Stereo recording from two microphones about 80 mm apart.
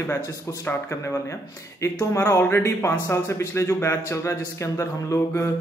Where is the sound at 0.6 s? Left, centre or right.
Left.